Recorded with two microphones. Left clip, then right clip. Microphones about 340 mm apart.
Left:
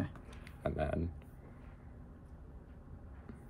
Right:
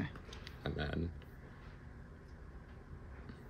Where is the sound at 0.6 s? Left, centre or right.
Centre.